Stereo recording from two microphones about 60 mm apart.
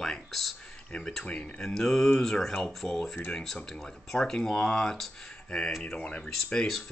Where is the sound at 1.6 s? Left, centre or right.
Centre.